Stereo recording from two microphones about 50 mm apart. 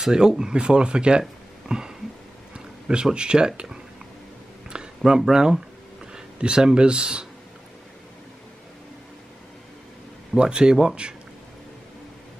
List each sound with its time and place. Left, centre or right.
0.0 s speech: centre
1.7 s a sound: centre
2.5 s speech: centre
4.6 s a sound: centre
5.3 s speech: centre
10.3 s speech: centre